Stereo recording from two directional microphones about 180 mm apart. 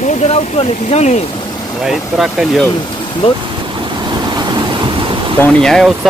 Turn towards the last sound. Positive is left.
turn(degrees=0)  # may be behind; listen again after turning